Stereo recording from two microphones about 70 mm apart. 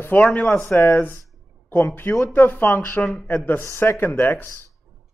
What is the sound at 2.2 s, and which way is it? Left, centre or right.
Speech, left.